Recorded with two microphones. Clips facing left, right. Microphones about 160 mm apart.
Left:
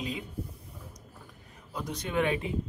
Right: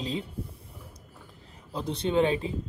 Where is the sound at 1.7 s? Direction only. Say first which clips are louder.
Right 5 dB; 30° right (ahead or behind).